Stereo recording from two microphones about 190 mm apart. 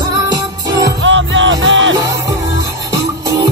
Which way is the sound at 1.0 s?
75° right (ahead or behind).